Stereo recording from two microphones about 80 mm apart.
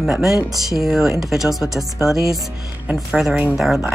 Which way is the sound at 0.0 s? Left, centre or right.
Centre.